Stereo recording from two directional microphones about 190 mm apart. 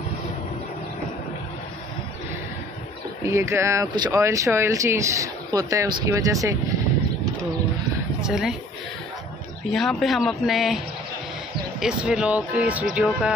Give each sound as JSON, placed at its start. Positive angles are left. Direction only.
{"t": 3.2, "sound": "speech", "side_deg": -15}
{"t": 8.2, "sound": "speech", "side_deg": -5}
{"t": 9.7, "sound": "speech", "side_deg": 0}
{"t": 11.8, "sound": "speech", "side_deg": -5}